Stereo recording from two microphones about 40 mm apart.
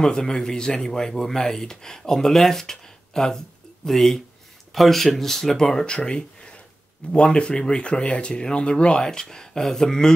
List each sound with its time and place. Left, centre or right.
0.0 s speech: centre
5.9 s a sound: left
7.1 s speech: left